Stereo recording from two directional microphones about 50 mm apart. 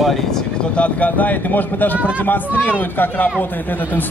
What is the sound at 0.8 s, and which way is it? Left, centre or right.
A man's voice, left.